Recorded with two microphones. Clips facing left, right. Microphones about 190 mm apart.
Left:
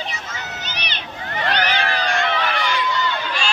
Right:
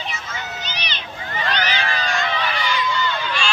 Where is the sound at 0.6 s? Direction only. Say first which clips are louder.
Even; 55° left (ahead or behind).